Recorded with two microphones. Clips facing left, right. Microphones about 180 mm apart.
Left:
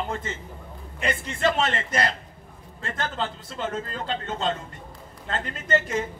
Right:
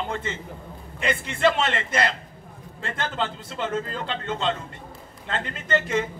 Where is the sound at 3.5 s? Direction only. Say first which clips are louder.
Right 2 dB; 40° left (ahead or behind).